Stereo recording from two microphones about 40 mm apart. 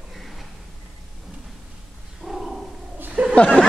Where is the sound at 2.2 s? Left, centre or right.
Centre.